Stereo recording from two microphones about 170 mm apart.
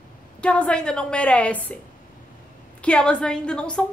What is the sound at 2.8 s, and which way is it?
A woman's voice, 5° left (ahead or behind).